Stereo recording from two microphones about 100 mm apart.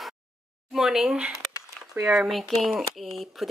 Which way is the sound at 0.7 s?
5° right (ahead or behind).